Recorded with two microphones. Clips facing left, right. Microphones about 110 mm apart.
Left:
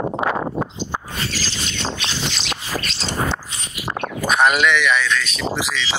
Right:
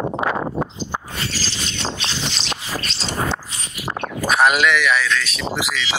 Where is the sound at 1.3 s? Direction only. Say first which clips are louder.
Left 1 dB; 35° right (ahead or behind).